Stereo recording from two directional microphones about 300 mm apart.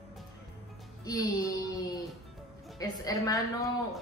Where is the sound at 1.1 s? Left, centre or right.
Centre.